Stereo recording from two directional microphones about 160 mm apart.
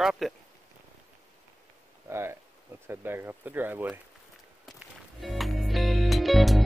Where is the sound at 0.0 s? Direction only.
5° right (ahead or behind).